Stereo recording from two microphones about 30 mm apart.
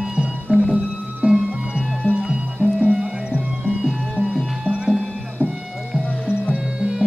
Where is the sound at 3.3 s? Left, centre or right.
Right.